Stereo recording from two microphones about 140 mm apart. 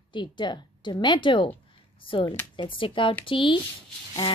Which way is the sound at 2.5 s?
40° left (ahead or behind).